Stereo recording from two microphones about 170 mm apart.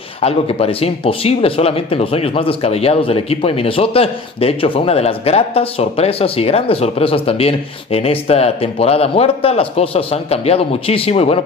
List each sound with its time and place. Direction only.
0.2 s speech: 35° left (ahead or behind)